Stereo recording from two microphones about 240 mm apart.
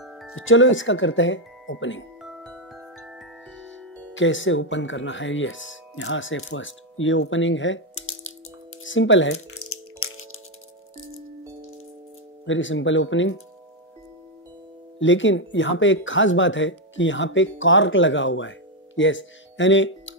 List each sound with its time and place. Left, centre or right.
0.0 s music: centre
0.3 s speech: left
2.2 s glockenspiel: centre
4.1 s speech: left
8.8 s music: left
12.4 s speech: left
15.0 s speech: left